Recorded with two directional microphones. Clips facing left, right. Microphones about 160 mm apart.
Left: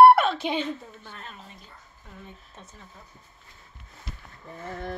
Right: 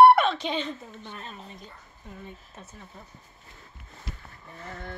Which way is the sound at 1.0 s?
20° right (ahead or behind).